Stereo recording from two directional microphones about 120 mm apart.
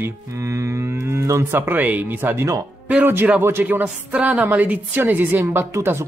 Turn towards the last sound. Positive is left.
turn(degrees=-20)  # may be behind; listen again after turning